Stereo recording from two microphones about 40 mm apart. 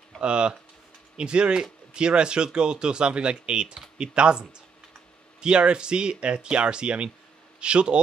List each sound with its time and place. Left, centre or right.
0.2 s speech: right